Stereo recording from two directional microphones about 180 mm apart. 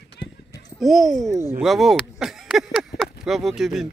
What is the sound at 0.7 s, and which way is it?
Speech, centre (ahead or behind).